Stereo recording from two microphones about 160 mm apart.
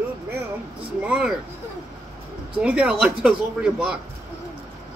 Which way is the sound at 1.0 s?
5° right (ahead or behind).